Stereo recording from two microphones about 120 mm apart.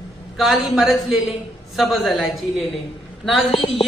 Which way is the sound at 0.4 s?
Centre (ahead or behind).